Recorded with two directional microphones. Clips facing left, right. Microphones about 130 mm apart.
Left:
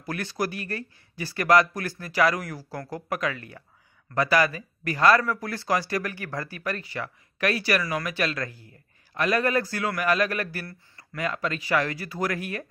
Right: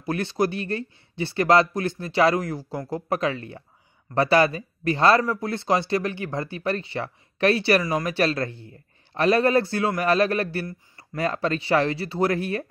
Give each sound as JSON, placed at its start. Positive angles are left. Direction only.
{"t": 0.0, "sound": "speech", "side_deg": -25}